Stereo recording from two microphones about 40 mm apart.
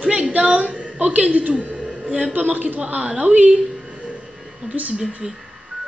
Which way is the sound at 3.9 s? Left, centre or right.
Right.